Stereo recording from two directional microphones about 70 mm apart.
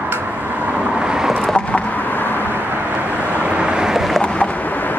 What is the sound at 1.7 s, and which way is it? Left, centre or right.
Vehicle, left.